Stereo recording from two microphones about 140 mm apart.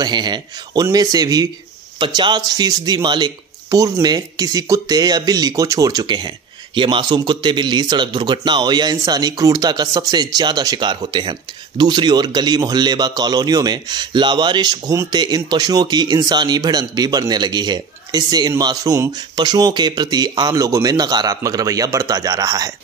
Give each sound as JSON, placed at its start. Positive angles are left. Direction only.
{"t": 0.0, "sound": "speech", "side_deg": -30}